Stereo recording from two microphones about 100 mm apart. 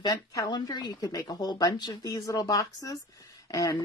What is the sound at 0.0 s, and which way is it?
Speech, 35° left (ahead or behind).